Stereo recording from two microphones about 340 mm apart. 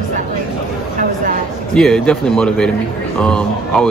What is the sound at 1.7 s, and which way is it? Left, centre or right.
Speech, centre.